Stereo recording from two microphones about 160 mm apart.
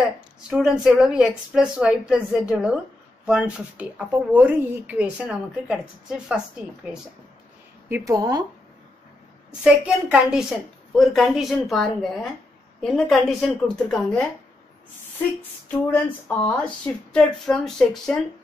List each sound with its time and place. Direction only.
0.5 s a woman's voice: 5° right (ahead or behind)
7.9 s speech: 20° right (ahead or behind)
9.6 s a woman's voice: 10° right (ahead or behind)
15.9 s speech: 10° left (ahead or behind)